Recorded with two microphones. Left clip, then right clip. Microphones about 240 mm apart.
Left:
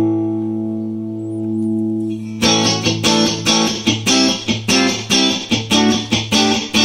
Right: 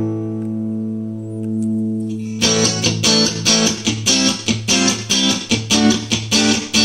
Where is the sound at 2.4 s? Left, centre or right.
Right.